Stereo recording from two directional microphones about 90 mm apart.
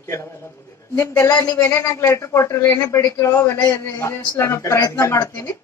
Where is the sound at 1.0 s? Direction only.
30° left (ahead or behind).